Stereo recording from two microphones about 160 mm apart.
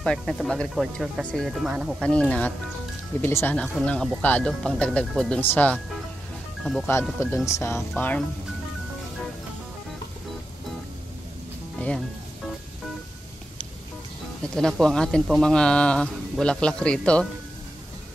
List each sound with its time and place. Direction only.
0.0 s speech: 5° left (ahead or behind)
6.9 s speech: 15° left (ahead or behind)
11.8 s music: 10° left (ahead or behind)
14.5 s speech: 5° left (ahead or behind)